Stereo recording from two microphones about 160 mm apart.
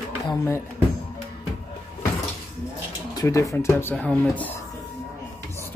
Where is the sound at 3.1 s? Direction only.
20° left (ahead or behind).